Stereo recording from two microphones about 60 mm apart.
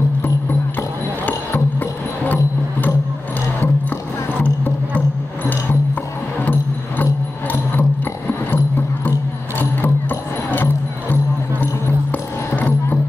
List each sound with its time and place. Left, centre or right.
1.2 s music: left
4.3 s music: left
6.4 s music: left
8.5 s music: left